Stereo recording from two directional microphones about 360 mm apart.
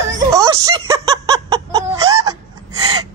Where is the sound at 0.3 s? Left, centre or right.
Centre.